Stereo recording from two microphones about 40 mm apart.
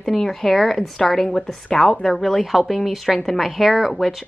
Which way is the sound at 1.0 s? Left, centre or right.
Centre.